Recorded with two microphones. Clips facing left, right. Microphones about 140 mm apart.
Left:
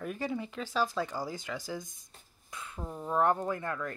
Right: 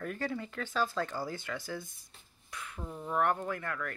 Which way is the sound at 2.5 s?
25° left (ahead or behind).